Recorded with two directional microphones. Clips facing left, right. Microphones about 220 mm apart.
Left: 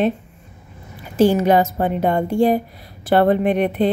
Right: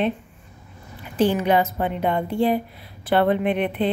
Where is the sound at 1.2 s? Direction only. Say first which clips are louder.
Left 5 dB; 40° left (ahead or behind).